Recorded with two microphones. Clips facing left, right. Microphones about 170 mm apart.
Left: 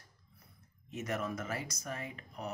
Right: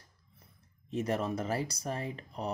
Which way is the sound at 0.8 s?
30° right (ahead or behind).